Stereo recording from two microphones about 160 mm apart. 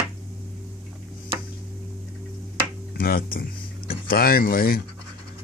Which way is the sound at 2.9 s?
65° left (ahead or behind).